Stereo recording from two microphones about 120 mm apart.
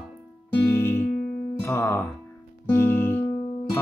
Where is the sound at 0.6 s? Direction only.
20° left (ahead or behind).